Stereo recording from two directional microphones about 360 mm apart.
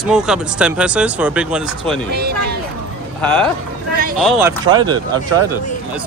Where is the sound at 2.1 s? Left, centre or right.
Right.